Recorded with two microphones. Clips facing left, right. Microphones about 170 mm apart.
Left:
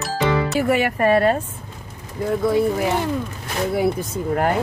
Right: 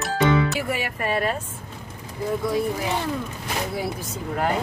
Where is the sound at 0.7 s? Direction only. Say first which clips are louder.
Left 9 dB; 55° left (ahead or behind).